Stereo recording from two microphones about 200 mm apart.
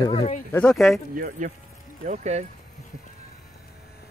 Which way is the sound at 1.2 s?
45° right (ahead or behind).